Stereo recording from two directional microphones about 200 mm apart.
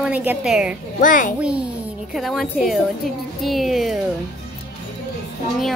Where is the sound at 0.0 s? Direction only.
5° right (ahead or behind).